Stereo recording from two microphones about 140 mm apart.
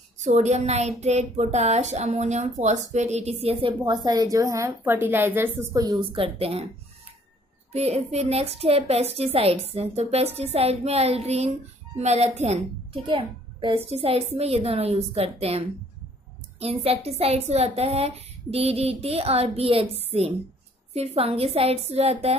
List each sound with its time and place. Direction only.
0.2 s a woman's voice: 55° right (ahead or behind)
7.7 s a woman's voice: 50° right (ahead or behind)